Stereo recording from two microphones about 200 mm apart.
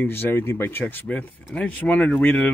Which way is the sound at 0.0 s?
10° left (ahead or behind).